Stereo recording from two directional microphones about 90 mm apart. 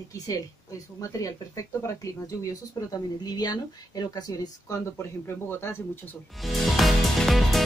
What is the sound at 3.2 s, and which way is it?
Speech, 45° left (ahead or behind).